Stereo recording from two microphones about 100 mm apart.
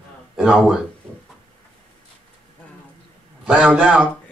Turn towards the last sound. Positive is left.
turn(degrees=-10)  # may be behind; listen again after turning